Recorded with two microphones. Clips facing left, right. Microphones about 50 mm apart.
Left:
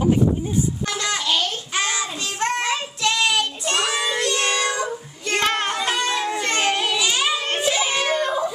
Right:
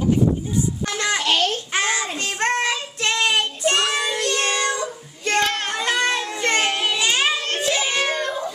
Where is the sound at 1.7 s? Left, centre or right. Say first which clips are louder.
Right 2 dB; right.